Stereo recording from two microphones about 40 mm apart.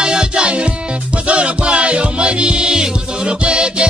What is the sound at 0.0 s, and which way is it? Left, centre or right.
Music, right.